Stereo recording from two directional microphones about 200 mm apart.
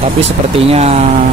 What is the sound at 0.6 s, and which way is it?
Speech, 30° right (ahead or behind).